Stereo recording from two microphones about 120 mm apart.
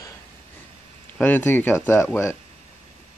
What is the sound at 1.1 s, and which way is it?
Speech, 15° left (ahead or behind).